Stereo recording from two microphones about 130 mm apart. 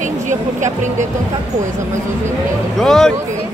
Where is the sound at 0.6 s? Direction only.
70° right (ahead or behind).